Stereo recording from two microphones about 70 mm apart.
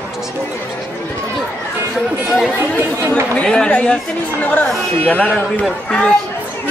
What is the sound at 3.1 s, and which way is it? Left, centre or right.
A man's voice, centre.